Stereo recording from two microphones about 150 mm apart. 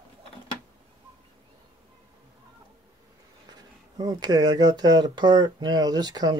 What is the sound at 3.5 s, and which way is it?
Speech, 25° right (ahead or behind).